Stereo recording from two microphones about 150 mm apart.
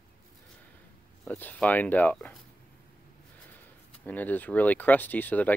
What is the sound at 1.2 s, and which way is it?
Speech, 10° left (ahead or behind).